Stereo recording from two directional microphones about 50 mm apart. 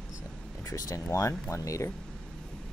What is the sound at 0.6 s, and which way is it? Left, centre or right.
Speech, left.